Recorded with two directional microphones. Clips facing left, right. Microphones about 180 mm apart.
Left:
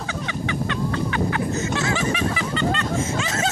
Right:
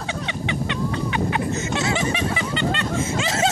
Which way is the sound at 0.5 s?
20° right (ahead or behind).